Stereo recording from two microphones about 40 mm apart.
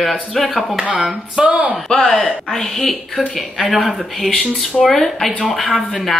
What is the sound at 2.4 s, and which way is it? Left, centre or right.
Speech, centre.